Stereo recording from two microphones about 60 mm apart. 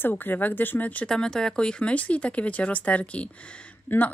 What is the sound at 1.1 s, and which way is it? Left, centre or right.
Speech, centre.